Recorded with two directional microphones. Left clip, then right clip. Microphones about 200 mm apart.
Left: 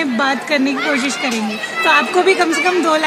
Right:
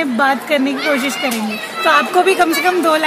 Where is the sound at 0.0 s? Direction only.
30° right (ahead or behind).